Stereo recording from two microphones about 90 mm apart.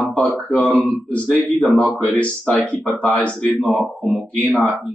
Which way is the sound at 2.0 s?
15° left (ahead or behind).